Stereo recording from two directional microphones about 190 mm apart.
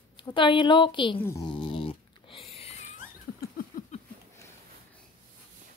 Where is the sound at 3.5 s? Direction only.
45° left (ahead or behind).